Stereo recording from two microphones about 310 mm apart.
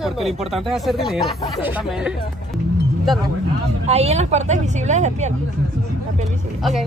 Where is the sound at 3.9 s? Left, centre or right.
Centre.